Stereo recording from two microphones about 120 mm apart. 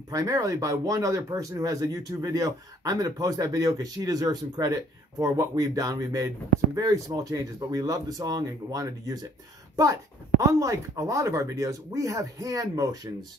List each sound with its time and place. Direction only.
0.1 s speech: 30° right (ahead or behind)
10.4 s speech: 25° right (ahead or behind)